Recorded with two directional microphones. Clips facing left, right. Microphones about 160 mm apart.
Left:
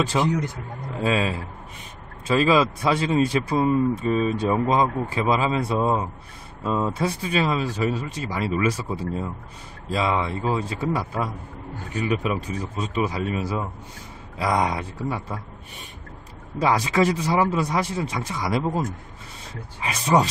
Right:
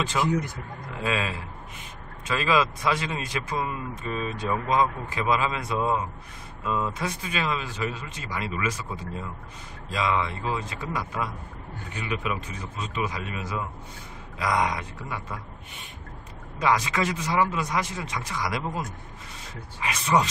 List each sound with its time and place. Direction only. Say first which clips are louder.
0.1 s speech: left 3 dB; 30° left (ahead or behind)
16.5 s speech: left 4 dB; 35° left (ahead or behind)
19.8 s speech: left 3 dB; 35° left (ahead or behind)